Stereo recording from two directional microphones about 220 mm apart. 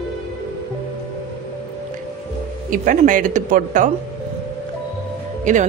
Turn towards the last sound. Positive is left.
turn(degrees=-35)  # may be behind; listen again after turning